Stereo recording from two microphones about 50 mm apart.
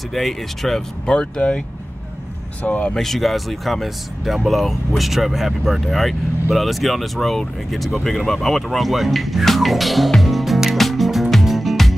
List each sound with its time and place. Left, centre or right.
0.1 s speech: centre; by 1.6 s left
2.6 s speech: left
2.9 s speech: centre
8.2 s music: centre